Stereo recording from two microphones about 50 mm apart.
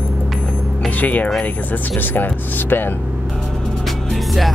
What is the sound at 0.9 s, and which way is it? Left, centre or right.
Speech, left.